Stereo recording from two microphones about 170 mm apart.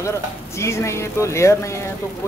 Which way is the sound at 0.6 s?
15° left (ahead or behind).